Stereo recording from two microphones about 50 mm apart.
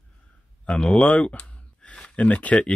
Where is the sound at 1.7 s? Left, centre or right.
Left.